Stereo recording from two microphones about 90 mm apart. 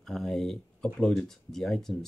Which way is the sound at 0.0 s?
5° left (ahead or behind).